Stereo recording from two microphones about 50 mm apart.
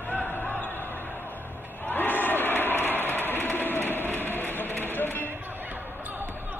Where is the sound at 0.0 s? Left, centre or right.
Left.